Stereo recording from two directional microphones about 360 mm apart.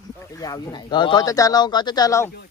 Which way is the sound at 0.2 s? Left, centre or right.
Centre.